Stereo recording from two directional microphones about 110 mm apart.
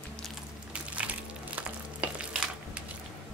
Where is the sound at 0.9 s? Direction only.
15° right (ahead or behind).